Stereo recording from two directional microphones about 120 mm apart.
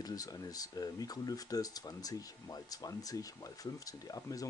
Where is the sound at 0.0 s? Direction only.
30° left (ahead or behind).